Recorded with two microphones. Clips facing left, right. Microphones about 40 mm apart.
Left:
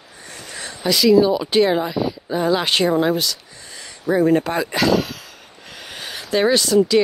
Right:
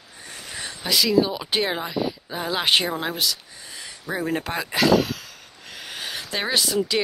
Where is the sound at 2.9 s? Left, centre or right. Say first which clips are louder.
Left 8 dB; centre.